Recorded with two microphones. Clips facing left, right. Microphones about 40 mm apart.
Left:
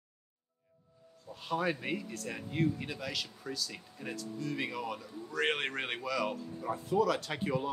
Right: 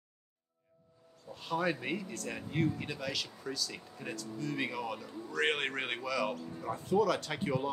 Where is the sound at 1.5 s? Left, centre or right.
Centre.